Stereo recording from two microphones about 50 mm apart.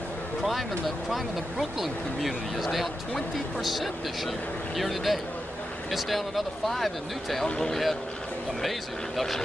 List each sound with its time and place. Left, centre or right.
0.4 s speech: centre
7.4 s speech: centre
7.7 s speech: centre